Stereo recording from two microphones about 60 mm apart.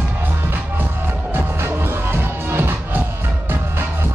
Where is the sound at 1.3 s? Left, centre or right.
Right.